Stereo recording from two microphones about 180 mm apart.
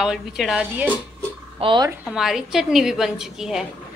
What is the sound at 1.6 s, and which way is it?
Speech, 25° right (ahead or behind).